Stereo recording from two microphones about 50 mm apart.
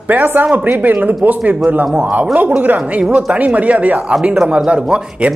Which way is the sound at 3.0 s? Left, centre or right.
Right.